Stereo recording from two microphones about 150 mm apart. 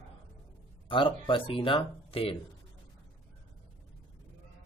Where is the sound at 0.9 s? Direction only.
35° left (ahead or behind).